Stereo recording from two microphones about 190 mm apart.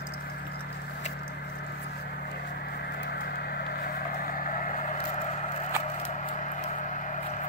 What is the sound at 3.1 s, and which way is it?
Vehicle, 55° left (ahead or behind).